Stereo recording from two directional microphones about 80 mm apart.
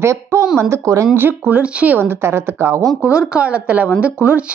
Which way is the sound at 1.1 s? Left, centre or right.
Right.